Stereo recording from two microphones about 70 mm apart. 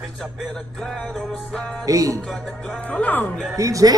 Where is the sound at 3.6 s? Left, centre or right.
Right.